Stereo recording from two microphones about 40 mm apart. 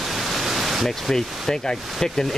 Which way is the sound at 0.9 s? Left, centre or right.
Centre.